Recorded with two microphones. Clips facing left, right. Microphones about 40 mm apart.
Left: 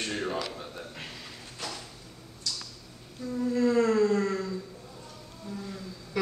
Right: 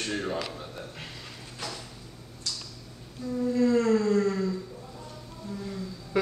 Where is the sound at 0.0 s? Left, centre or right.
Centre.